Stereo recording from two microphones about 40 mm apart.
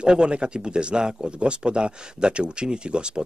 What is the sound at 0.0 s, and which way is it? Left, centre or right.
Speech, right.